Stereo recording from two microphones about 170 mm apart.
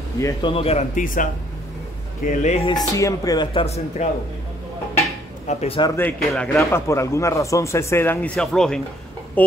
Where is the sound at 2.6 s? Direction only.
20° left (ahead or behind).